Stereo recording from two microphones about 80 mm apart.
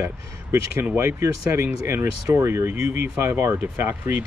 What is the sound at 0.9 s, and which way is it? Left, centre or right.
Speech, right.